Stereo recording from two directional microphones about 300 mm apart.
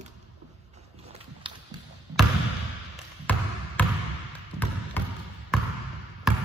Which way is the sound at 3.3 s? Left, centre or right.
Centre.